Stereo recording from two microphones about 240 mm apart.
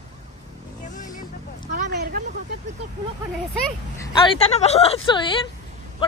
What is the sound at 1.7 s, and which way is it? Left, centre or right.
Vehicle, right.